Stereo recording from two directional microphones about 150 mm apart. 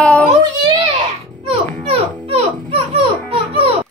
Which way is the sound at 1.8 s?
40° right (ahead or behind).